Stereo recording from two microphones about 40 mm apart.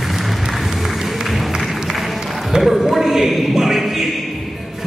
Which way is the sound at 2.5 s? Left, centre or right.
Centre.